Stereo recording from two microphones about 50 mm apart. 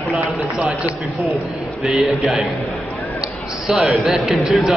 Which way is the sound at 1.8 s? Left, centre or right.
Centre.